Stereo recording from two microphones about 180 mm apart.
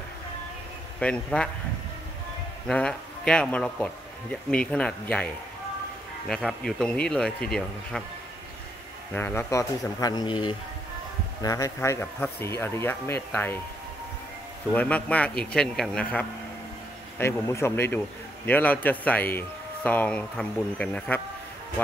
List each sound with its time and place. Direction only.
0.9 s a man's voice: 5° left (ahead or behind)
2.7 s a man's voice: 5° left (ahead or behind)
9.1 s a man's voice: 10° left (ahead or behind)
14.7 s a man's voice: 10° left (ahead or behind)